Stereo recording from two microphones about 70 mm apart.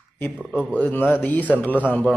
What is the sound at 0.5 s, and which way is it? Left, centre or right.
Speech, left.